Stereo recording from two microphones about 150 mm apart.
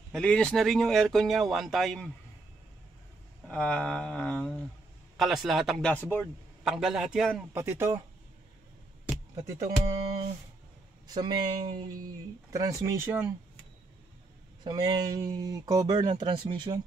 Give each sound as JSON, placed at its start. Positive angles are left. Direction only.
{"t": 0.1, "sound": "speech", "side_deg": 5}
{"t": 3.4, "sound": "speech", "side_deg": 5}
{"t": 7.5, "sound": "speech", "side_deg": -15}
{"t": 9.3, "sound": "speech", "side_deg": -25}
{"t": 11.1, "sound": "speech", "side_deg": -25}
{"t": 14.6, "sound": "speech", "side_deg": -30}